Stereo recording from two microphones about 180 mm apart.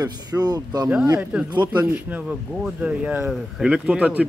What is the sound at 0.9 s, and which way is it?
Speech, 10° right (ahead or behind).